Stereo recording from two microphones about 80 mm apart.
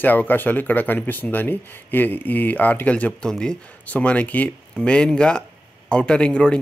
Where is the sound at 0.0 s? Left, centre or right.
Left.